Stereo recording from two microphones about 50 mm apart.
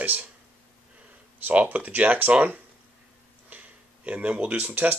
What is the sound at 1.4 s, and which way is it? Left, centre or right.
Speech, right.